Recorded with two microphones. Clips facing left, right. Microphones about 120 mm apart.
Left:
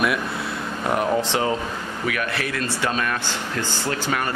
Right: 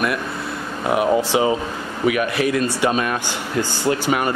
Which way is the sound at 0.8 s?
5° right (ahead or behind).